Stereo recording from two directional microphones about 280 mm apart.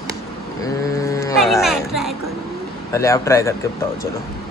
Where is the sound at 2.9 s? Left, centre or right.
Centre.